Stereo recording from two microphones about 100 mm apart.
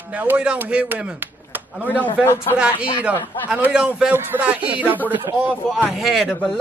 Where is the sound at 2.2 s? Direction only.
25° left (ahead or behind).